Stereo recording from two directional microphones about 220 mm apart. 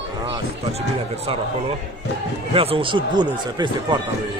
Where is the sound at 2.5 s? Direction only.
25° right (ahead or behind).